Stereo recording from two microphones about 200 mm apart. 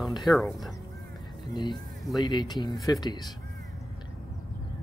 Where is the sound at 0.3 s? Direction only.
Centre (ahead or behind).